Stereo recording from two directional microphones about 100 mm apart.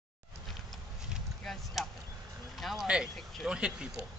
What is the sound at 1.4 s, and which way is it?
Chop, 5° left (ahead or behind).